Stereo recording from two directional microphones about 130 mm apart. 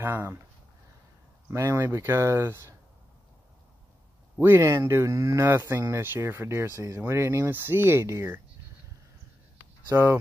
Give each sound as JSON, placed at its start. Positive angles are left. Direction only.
{"t": 0.0, "sound": "speech", "side_deg": -15}
{"t": 1.5, "sound": "speech", "side_deg": -20}
{"t": 4.4, "sound": "speech", "side_deg": -20}
{"t": 9.9, "sound": "speech", "side_deg": -25}